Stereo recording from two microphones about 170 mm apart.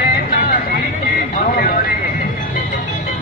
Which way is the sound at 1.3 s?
55° left (ahead or behind).